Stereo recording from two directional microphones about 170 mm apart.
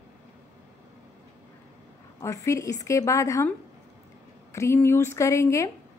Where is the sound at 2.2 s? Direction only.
20° left (ahead or behind).